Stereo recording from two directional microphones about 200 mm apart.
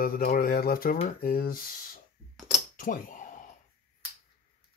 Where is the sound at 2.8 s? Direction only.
40° left (ahead or behind).